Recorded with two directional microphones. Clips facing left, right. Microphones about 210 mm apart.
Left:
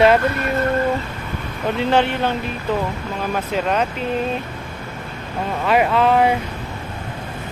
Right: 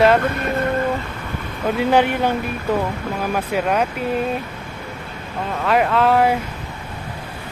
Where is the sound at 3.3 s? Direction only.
10° right (ahead or behind).